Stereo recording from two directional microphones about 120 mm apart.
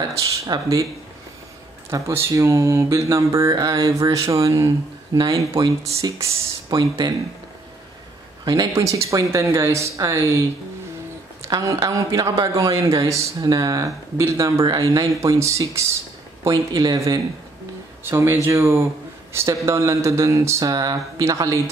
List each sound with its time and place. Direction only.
0.5 s speech: 30° right (ahead or behind)
1.9 s speech: 25° right (ahead or behind)
6.7 s speech: 35° right (ahead or behind)
8.5 s speech: 30° right (ahead or behind)
11.4 s speech: 25° right (ahead or behind)
18.0 s speech: 20° right (ahead or behind)